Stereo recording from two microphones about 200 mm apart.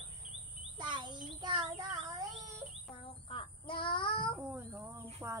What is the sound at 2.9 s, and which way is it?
Child singing, 25° left (ahead or behind).